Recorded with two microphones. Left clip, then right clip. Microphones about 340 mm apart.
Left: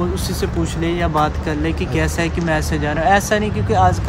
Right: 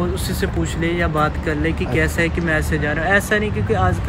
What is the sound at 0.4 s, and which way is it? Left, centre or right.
Speech, centre.